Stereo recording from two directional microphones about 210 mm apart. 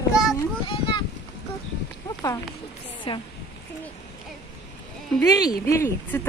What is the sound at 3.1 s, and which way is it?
Speech, 25° left (ahead or behind).